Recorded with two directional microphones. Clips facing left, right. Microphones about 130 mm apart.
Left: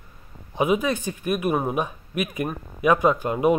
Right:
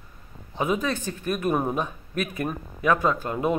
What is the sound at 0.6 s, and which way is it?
Speech, 15° left (ahead or behind).